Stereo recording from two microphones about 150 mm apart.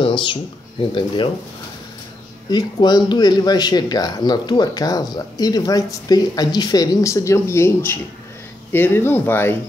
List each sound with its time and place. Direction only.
0.0 s a sound: 35° left (ahead or behind)
0.9 s speech: 35° left (ahead or behind)
2.5 s speech: 30° left (ahead or behind)